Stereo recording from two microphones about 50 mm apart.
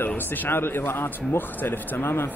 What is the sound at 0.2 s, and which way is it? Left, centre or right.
Speech, left.